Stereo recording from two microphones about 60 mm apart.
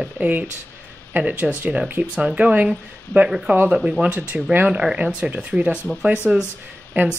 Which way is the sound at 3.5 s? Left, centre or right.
Right.